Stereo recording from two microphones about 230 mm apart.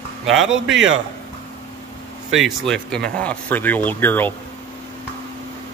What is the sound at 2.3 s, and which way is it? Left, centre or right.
Speech, centre.